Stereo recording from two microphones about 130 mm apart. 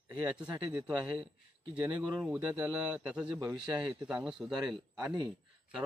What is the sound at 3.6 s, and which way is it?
Speech, 35° right (ahead or behind).